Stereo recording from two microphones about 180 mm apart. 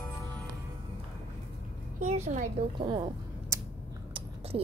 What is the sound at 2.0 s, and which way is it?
Speech, 40° right (ahead or behind).